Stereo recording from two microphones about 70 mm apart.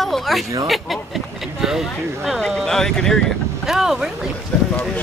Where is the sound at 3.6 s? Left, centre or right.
Centre.